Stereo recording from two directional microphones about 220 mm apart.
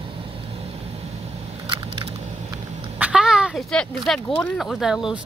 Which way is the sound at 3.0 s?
5° right (ahead or behind).